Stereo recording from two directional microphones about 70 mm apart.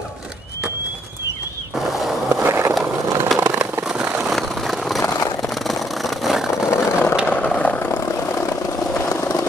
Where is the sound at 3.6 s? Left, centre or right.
Right.